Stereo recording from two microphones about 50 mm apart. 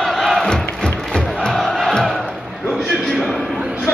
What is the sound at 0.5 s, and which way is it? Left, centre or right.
Crowd, centre.